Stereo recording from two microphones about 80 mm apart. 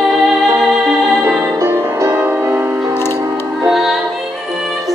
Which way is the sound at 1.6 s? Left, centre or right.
Right.